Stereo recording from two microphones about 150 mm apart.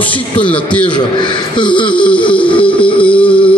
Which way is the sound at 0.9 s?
30° left (ahead or behind).